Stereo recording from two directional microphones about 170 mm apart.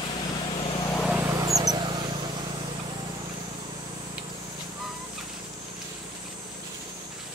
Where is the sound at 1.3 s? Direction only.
20° right (ahead or behind).